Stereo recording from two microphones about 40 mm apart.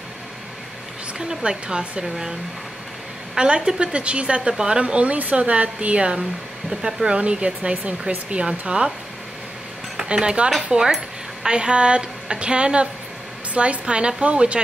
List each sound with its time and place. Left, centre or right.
1.4 s a woman's voice: right
2.0 s speech: centre
3.3 s a woman's voice: right
5.9 s a woman's voice: right
7.2 s a woman's voice: right
9.9 s speech: centre
10.7 s a woman's voice: centre